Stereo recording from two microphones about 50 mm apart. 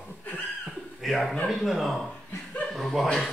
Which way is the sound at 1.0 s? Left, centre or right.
Centre.